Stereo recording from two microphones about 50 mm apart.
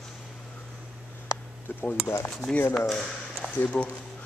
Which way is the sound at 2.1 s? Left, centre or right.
Left.